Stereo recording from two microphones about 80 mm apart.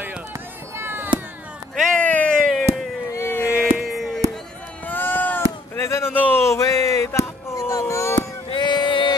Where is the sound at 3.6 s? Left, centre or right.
Centre.